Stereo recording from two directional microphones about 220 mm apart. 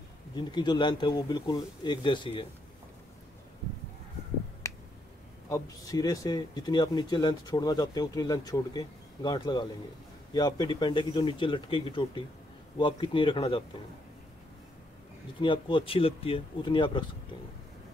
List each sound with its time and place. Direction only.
0.4 s speech: 20° left (ahead or behind)
4.6 s finger snapping: 15° left (ahead or behind)
5.5 s speech: 15° left (ahead or behind)
15.4 s speech: 20° left (ahead or behind)